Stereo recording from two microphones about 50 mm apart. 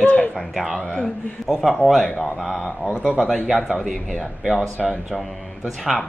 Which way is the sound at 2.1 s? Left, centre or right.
Centre.